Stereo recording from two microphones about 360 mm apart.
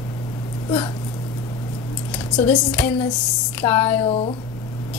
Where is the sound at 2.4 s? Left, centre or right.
Centre.